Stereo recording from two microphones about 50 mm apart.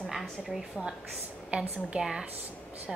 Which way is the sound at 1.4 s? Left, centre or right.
Right.